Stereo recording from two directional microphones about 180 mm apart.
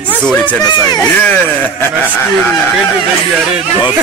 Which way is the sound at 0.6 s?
20° left (ahead or behind).